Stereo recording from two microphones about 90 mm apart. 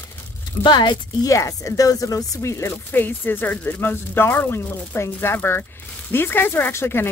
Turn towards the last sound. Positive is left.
turn(degrees=25)  # may be behind; listen again after turning